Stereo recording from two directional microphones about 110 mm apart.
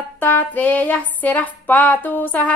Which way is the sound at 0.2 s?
15° left (ahead or behind).